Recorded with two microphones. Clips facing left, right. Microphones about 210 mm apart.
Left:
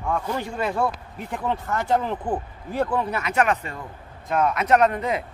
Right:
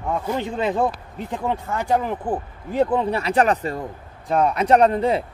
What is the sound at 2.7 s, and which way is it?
A man's voice, 20° right (ahead or behind).